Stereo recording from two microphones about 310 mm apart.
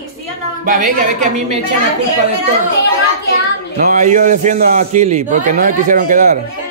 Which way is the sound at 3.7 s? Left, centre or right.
Right.